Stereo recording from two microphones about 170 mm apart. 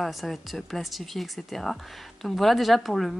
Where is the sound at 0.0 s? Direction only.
Centre (ahead or behind).